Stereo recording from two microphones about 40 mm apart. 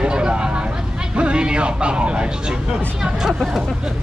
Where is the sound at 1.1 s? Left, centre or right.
Right.